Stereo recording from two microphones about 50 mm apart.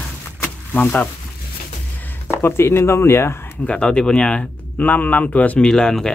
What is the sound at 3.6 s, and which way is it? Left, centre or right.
Speech, centre.